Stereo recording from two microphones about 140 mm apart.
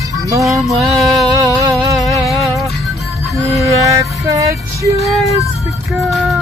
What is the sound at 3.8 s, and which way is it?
Music, 20° right (ahead or behind).